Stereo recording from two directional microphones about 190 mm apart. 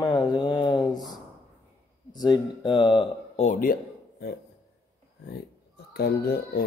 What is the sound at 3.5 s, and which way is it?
Speech, 45° left (ahead or behind).